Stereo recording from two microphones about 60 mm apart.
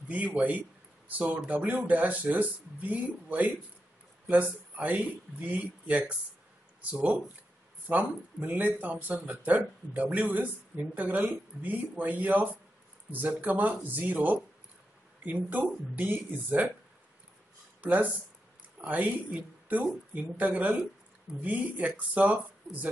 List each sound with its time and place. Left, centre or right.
0.1 s a man's voice: right
17.8 s speech: right